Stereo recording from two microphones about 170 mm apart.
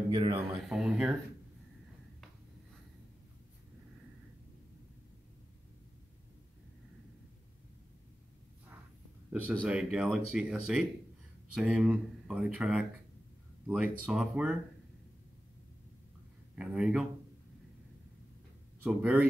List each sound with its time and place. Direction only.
0.1 s speech: 30° right (ahead or behind)
0.7 s speech: 5° right (ahead or behind)
9.3 s speech: 5° right (ahead or behind)
16.5 s speech: 5° right (ahead or behind)
18.9 s speech: 5° right (ahead or behind)